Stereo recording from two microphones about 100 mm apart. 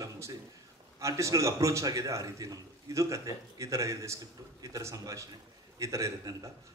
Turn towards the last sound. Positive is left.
turn(degrees=-30)  # may be behind; listen again after turning